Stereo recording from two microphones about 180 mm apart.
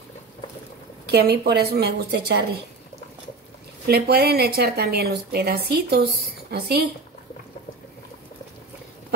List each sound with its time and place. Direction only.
1.0 s speech: 60° right (ahead or behind)
3.8 s speech: 60° right (ahead or behind)